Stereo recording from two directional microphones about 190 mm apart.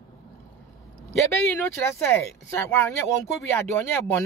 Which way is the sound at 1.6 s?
10° left (ahead or behind).